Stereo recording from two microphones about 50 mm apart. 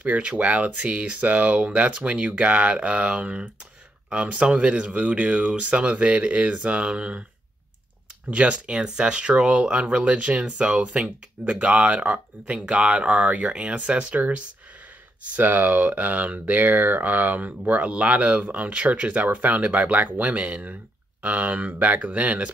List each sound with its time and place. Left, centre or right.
0.0 s speech: right
8.3 s speech: right